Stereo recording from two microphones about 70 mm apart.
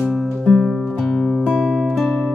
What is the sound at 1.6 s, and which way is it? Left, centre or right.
Music, centre.